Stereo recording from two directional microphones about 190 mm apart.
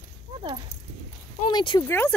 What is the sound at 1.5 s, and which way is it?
Speech, 25° left (ahead or behind).